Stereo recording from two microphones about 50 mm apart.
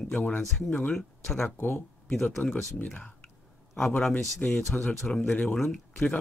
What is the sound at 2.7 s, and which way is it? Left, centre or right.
Speech, left.